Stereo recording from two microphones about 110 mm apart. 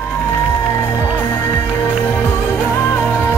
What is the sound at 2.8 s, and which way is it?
Music, 15° left (ahead or behind).